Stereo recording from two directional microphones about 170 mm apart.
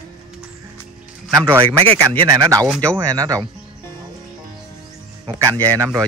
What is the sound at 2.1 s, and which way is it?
Speech, 20° right (ahead or behind).